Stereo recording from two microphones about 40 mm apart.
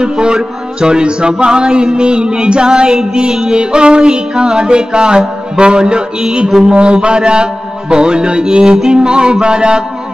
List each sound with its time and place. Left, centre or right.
0.0 s music: right